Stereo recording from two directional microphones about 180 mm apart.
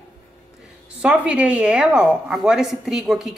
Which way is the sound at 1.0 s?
5° right (ahead or behind).